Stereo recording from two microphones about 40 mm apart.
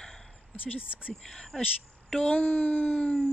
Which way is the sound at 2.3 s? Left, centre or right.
Left.